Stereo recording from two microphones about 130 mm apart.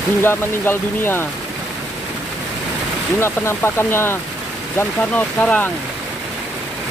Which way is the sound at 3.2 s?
20° left (ahead or behind).